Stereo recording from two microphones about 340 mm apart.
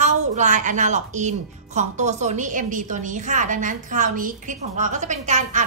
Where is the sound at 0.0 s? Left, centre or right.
Right.